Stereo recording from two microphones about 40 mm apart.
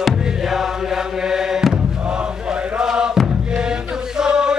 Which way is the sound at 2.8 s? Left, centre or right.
Centre.